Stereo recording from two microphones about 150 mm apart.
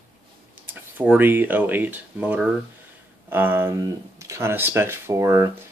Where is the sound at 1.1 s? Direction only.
15° right (ahead or behind).